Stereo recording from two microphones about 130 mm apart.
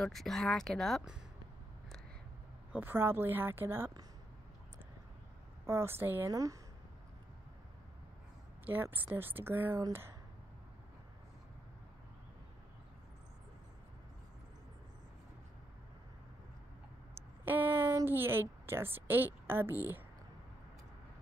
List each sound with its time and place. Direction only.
0.0 s speech: centre (ahead or behind)
2.7 s a woman's voice: 15° right (ahead or behind)
5.7 s a woman's voice: 20° right (ahead or behind)
8.8 s a woman's voice: 15° right (ahead or behind)
17.1 s a sound: 15° right (ahead or behind)
18.0 s a woman's voice: 15° right (ahead or behind)